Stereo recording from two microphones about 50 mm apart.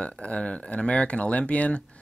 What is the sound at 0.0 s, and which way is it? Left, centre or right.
Speech, left.